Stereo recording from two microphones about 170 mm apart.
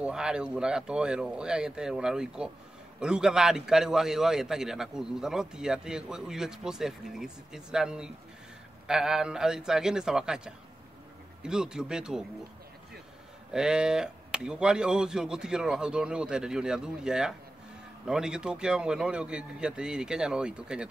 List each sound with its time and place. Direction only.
0.0 s a man's voice: 5° right (ahead or behind)
13.5 s a man's voice: 5° right (ahead or behind)